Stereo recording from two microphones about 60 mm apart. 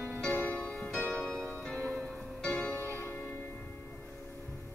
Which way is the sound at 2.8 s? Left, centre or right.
Right.